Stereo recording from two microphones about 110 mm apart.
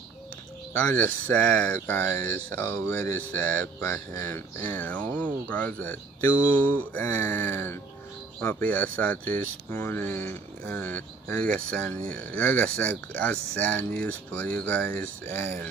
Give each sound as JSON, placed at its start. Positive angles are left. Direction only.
{"t": 0.8, "sound": "speech", "side_deg": 15}
{"t": 4.6, "sound": "speech", "side_deg": 15}